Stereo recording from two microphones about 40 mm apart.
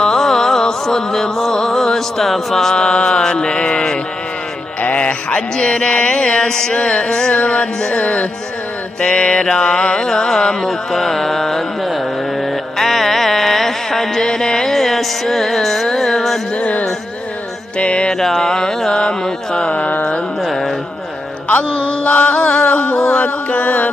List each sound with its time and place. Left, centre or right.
0.0 s music: centre; by 8.3 s left
9.0 s carnatic music: left; by 11.6 s centre
12.7 s carnatic music: centre
17.7 s music: left
18.1 s carnatic music: centre
19.0 s music: centre
19.7 s a sound: left
20.4 s speech: centre
21.5 s a sound: left